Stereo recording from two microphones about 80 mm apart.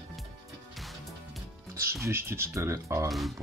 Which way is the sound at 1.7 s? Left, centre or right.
Right.